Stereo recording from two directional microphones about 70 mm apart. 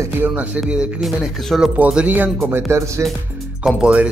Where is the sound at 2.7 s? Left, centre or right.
Right.